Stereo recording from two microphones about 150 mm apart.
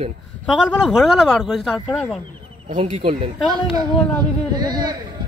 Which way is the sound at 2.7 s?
40° right (ahead or behind).